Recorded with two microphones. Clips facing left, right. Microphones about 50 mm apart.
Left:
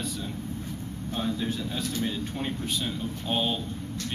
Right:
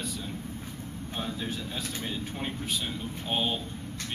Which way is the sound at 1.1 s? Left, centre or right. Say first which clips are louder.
Left 5 dB; centre.